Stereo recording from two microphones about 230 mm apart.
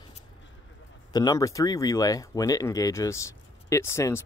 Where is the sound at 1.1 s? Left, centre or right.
Centre.